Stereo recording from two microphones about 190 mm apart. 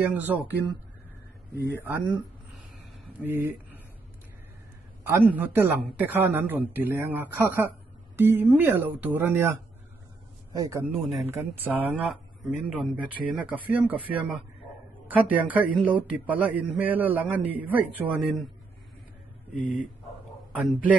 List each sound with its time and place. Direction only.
0.0 s a man's voice: 10° right (ahead or behind)
1.9 s a man's voice: 10° right (ahead or behind)
3.2 s speech: 10° right (ahead or behind)
5.0 s a man's voice: 10° right (ahead or behind)
20.5 s a man's voice: 5° right (ahead or behind)